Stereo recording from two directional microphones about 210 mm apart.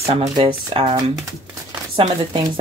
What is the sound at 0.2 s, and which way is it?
Speech, 25° right (ahead or behind).